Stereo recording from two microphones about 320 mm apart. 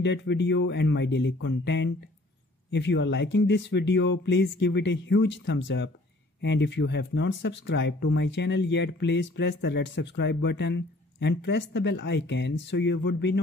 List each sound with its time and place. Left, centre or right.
0.0 s speech: left